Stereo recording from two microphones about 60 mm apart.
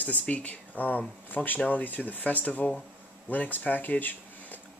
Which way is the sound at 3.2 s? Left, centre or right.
Left.